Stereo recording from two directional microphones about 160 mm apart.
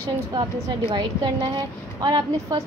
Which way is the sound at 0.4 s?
25° right (ahead or behind).